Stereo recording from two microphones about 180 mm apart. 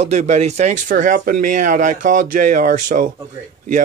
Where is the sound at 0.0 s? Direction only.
40° right (ahead or behind).